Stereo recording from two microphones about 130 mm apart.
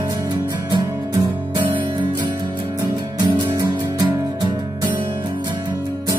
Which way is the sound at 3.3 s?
35° right (ahead or behind).